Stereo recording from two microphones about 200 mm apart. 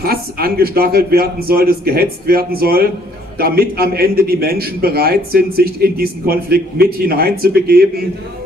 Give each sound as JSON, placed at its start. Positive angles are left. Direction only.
{"t": 0.0, "sound": "a man's voice", "side_deg": -50}